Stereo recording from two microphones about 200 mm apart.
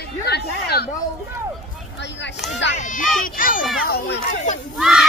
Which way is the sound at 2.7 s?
40° left (ahead or behind).